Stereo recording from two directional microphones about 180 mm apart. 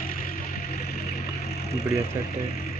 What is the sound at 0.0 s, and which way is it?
Music, 50° left (ahead or behind).